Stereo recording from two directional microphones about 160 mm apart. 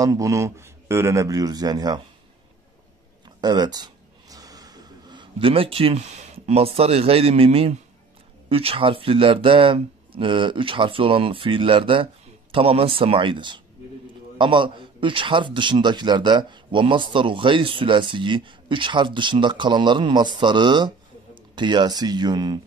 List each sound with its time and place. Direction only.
0.0 s a man's voice: 20° right (ahead or behind)
3.3 s a sound: 25° right (ahead or behind)
8.5 s a man's voice: 35° right (ahead or behind)